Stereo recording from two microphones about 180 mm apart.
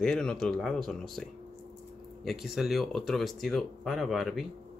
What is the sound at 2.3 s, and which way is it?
Speech, centre (ahead or behind).